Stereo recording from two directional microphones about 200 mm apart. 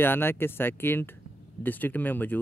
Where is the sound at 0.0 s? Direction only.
10° left (ahead or behind).